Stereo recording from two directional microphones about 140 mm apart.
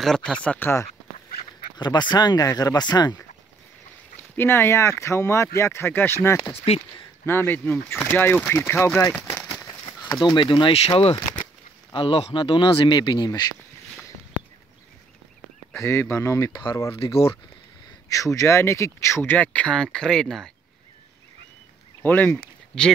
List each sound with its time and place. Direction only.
0.0 s speech: 5° left (ahead or behind)
1.8 s speech: 30° left (ahead or behind)
4.2 s speech: 15° left (ahead or behind)
9.5 s a sound: 25° left (ahead or behind)
10.2 s speech: 35° left (ahead or behind)
15.7 s speech: 20° left (ahead or behind)
18.0 s speech: 25° left (ahead or behind); by 20.5 s 5° left (ahead or behind)
22.0 s speech: 10° left (ahead or behind)